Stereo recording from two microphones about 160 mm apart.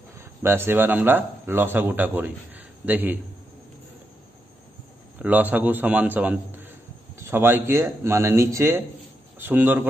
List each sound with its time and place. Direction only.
0.4 s speech: 15° right (ahead or behind)
5.2 s speech: 10° right (ahead or behind)